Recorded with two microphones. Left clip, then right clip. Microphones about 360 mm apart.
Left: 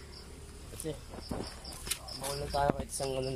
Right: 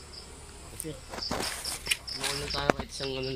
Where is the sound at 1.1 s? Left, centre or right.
Right.